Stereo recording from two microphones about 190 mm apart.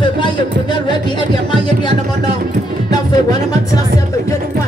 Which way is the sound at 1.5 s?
25° left (ahead or behind).